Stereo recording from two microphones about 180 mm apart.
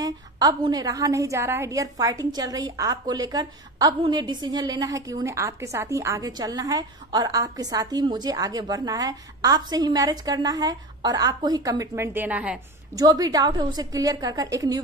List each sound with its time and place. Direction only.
0.0 s a woman's voice: 20° right (ahead or behind)
12.9 s a woman's voice: 20° right (ahead or behind)